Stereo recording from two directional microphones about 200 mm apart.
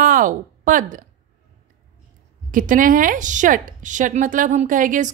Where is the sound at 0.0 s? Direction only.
40° right (ahead or behind).